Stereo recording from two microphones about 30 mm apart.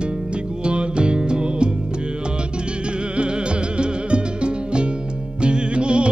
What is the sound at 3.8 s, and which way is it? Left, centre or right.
Music, right.